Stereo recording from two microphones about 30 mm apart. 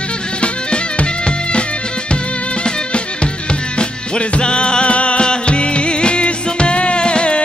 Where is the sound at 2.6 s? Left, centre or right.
Left.